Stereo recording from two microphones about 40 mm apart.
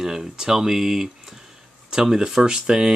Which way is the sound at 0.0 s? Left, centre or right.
Centre.